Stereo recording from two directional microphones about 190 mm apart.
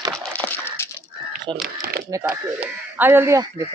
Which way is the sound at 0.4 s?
10° left (ahead or behind).